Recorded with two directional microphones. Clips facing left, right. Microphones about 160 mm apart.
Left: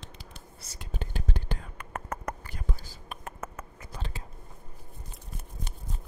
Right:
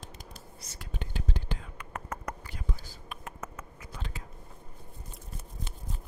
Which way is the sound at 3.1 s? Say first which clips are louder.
Left 2 dB; 45° left (ahead or behind).